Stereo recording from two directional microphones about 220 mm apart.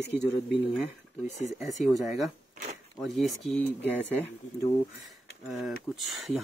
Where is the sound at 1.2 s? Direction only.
30° left (ahead or behind).